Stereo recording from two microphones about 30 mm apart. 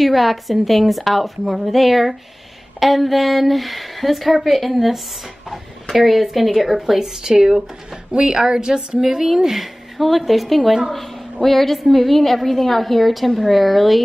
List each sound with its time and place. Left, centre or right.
0.0 s a woman's voice: centre
8.1 s a woman's voice: right
9.0 s speech: centre
9.9 s a woman's voice: centre